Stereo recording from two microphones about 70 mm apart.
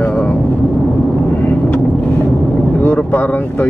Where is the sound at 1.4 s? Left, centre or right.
Left.